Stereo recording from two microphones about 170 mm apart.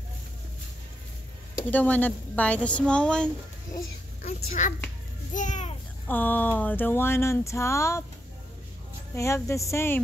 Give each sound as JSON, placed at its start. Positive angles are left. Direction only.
{"t": 1.7, "sound": "speech", "side_deg": 10}
{"t": 4.2, "sound": "a child's voice", "side_deg": 50}
{"t": 6.0, "sound": "speech", "side_deg": 10}
{"t": 9.1, "sound": "speech", "side_deg": 15}